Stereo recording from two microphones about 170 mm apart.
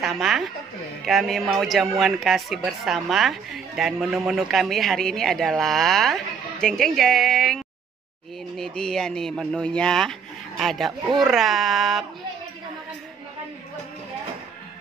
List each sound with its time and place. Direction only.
0.0 s speech: centre (ahead or behind)